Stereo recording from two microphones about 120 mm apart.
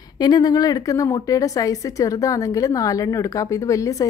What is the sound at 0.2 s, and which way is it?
Speech, 35° left (ahead or behind).